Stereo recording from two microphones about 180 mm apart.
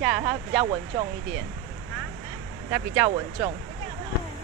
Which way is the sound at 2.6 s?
15° right (ahead or behind).